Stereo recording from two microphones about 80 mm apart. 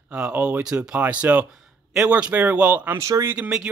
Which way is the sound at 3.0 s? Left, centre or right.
Right.